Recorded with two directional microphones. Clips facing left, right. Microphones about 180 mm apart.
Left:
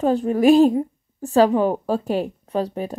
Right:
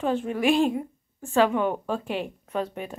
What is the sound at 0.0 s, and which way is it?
Speech, 40° left (ahead or behind).